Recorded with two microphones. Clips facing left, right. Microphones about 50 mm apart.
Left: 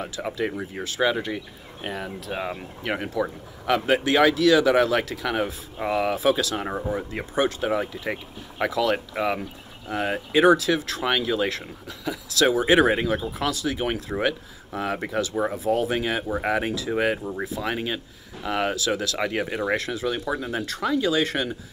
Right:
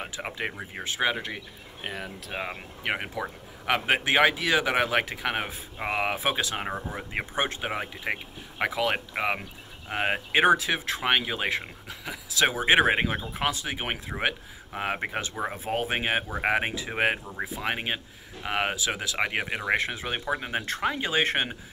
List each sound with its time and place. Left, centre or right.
0.0 s speech: right
1.1 s speech: centre
2.4 s speech: centre; by 21.5 s right